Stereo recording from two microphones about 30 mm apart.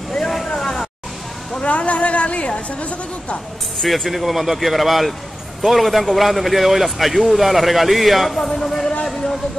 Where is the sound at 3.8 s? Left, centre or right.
Centre.